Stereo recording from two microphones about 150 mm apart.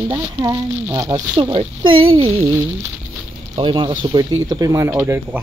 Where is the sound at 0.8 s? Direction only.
20° right (ahead or behind).